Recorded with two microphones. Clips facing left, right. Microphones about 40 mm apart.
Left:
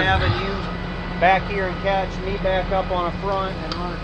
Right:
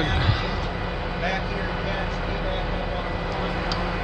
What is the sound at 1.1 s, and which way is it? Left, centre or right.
Speech, left.